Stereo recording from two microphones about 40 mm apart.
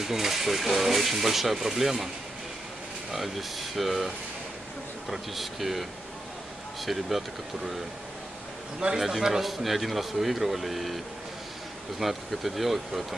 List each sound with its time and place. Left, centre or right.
0.0 s speech: centre
3.1 s speech: centre
5.1 s speech: centre
8.7 s a man's voice: right
9.0 s speech: centre
12.0 s speech: centre